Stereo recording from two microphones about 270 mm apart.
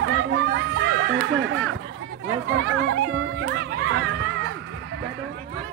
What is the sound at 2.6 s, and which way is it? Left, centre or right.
Crowd, right.